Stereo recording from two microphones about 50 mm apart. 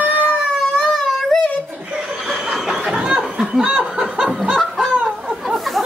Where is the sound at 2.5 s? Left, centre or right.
Centre.